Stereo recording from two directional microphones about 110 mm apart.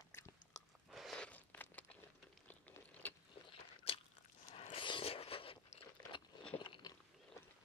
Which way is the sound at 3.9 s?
55° left (ahead or behind).